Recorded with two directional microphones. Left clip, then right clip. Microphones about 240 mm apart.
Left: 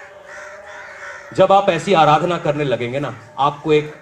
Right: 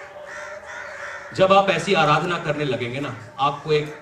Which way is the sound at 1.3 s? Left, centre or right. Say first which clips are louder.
Left 3 dB; left.